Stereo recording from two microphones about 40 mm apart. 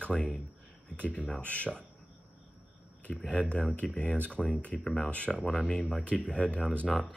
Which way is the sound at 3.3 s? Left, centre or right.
Left.